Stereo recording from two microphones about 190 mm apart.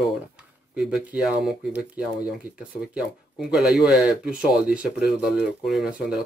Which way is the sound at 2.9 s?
5° right (ahead or behind).